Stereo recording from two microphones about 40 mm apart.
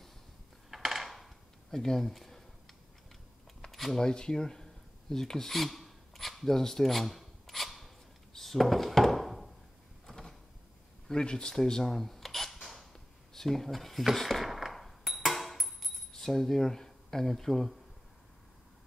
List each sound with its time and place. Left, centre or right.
0.7 s coin: centre
1.7 s speech: centre
3.7 s a sound: centre
4.0 s speech: centre
5.1 s filing: centre
10.0 s a sound: centre
11.1 s speech: left
11.9 s camera: centre
12.9 s a sound: centre
16.1 s speech: centre